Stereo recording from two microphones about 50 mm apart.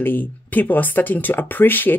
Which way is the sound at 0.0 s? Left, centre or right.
Left.